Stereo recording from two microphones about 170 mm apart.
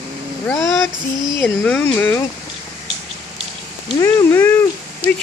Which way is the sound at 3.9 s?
15° left (ahead or behind).